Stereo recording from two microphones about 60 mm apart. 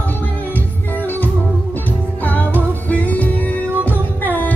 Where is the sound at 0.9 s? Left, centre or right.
Left.